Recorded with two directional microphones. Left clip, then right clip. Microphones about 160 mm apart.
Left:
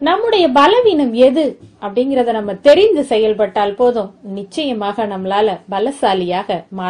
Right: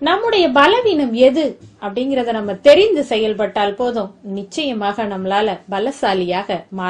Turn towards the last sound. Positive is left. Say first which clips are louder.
# left 2 dB
turn(degrees=40)  # may be behind; listen again after turning